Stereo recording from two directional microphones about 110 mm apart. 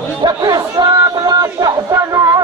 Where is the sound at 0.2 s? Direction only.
40° right (ahead or behind).